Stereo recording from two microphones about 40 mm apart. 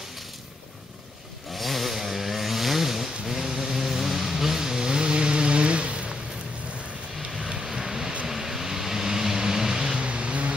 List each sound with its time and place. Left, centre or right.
1.5 s chainsaw: centre; by 6.1 s right
7.2 s vehicle: centre
9.9 s vehicle: right